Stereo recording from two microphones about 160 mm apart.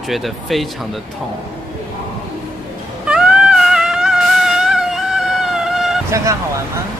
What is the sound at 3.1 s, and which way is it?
Music, 5° right (ahead or behind).